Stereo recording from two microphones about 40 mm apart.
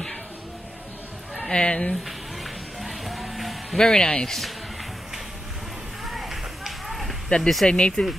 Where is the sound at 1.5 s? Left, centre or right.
Left.